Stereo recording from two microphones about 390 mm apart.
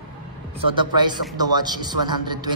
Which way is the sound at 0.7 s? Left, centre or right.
Centre.